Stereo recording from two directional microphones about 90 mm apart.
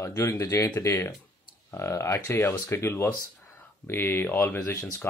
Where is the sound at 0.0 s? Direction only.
35° left (ahead or behind).